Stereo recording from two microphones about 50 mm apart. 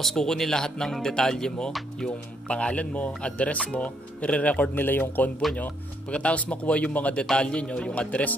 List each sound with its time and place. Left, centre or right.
0.0 s speech: centre; by 4.6 s left
4.7 s speech: left
6.1 s speech: left